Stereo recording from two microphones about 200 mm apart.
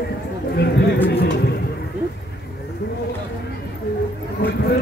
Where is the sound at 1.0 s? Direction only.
55° left (ahead or behind).